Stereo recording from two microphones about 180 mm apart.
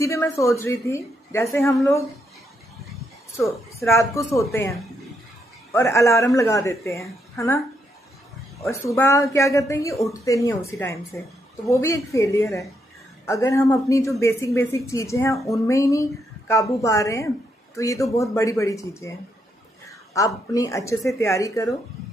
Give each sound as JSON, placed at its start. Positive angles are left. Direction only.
{"t": 0.0, "sound": "a woman's voice", "side_deg": 15}
{"t": 3.3, "sound": "a woman's voice", "side_deg": 15}
{"t": 20.2, "sound": "a woman's voice", "side_deg": 20}